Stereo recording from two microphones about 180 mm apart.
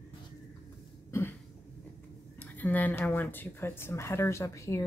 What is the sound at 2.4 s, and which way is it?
Speech, 10° left (ahead or behind).